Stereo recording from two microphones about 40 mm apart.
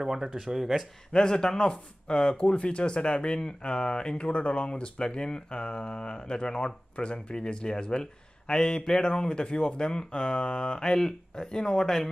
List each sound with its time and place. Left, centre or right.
0.0 s speech: centre
1.1 s speech: centre